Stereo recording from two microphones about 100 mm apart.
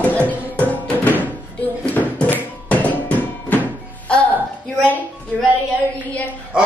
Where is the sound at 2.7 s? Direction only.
15° left (ahead or behind).